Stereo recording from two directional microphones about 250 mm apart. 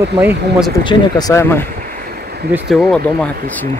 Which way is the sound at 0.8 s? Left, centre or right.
Centre.